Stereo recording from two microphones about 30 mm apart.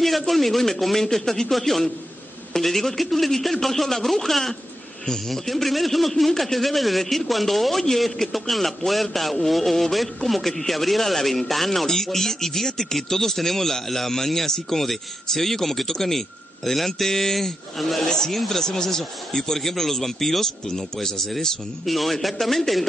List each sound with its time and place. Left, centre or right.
0.3 s a man's voice: centre
1.5 s a man's voice: centre
18.0 s speech: centre
18.3 s a man's voice: centre
18.6 s speech: centre
21.8 s a man's voice: centre